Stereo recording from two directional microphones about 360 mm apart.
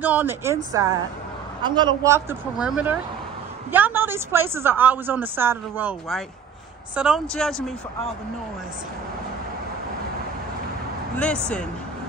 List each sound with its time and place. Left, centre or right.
0.0 s a woman's voice: centre
11.1 s a woman's voice: centre